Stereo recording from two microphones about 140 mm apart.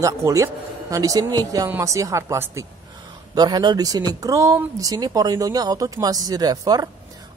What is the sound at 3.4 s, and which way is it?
Speech, 30° right (ahead or behind).